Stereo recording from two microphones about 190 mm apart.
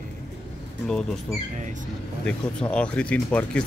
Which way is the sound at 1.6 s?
40° right (ahead or behind).